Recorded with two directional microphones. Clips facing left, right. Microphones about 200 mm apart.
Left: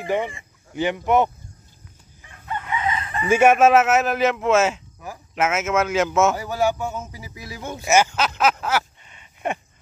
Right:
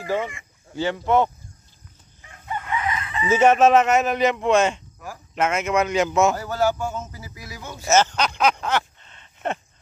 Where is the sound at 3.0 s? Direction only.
50° left (ahead or behind).